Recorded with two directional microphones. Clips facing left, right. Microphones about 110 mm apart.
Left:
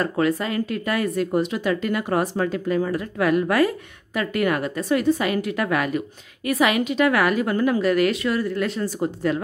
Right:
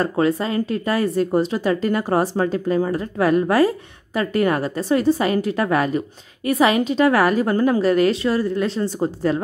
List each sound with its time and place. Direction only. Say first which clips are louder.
0.0 s speech: right 2 dB; 30° right (ahead or behind)